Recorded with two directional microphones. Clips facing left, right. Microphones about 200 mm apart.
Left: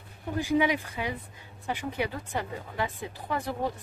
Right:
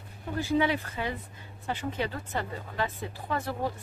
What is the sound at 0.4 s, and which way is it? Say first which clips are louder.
Speech: left 1 dB; 15° left (ahead or behind).